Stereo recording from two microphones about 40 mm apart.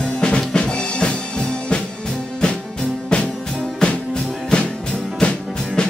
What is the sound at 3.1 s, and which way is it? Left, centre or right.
Music, left.